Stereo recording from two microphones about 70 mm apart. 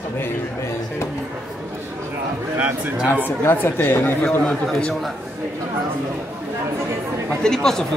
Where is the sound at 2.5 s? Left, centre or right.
Centre.